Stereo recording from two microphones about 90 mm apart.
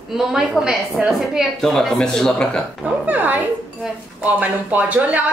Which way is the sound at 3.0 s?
20° right (ahead or behind).